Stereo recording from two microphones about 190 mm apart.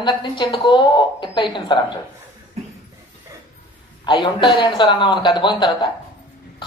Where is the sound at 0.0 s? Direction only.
25° left (ahead or behind).